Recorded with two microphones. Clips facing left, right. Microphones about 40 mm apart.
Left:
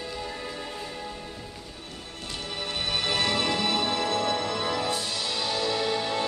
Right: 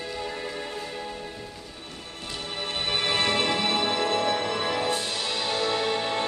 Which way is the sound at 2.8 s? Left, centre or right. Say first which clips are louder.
Right 2 dB; right.